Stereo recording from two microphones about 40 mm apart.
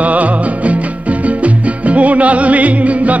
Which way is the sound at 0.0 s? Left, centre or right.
Right.